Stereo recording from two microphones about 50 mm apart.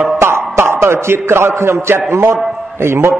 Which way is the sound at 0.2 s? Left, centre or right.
Right.